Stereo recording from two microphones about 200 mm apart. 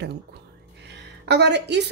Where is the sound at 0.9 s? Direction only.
55° right (ahead or behind).